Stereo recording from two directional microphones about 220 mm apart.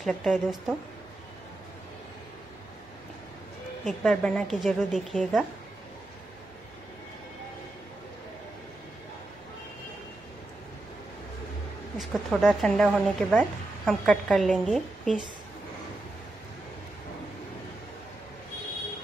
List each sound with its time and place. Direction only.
0.0 s speech: centre (ahead or behind)
3.8 s speech: centre (ahead or behind)
12.0 s speech: centre (ahead or behind)